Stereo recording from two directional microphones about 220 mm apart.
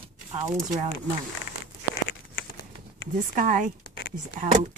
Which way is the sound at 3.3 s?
35° right (ahead or behind).